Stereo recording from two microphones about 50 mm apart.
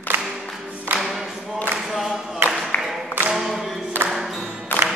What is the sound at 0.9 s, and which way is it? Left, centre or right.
Singing, centre.